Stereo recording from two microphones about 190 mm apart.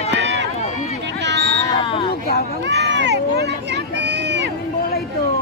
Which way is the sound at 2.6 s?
65° right (ahead or behind).